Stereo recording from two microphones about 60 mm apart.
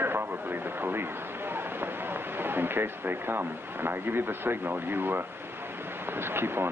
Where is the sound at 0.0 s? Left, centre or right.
Right.